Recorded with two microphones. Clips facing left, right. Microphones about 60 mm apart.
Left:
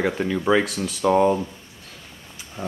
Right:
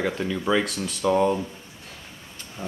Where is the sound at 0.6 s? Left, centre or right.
Centre.